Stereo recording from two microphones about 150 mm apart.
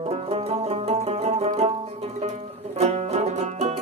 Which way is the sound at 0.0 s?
40° right (ahead or behind).